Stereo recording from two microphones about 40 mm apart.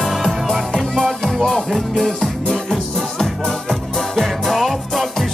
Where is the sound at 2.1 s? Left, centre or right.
Centre.